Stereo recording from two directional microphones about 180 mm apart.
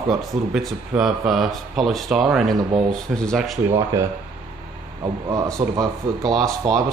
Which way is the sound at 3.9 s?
15° right (ahead or behind).